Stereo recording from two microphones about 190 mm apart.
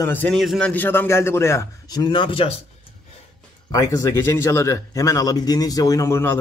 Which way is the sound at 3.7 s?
20° left (ahead or behind).